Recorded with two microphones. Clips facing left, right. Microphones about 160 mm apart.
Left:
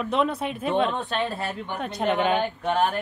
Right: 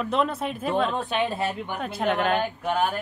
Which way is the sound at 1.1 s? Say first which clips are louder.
Right 2 dB; 15° right (ahead or behind).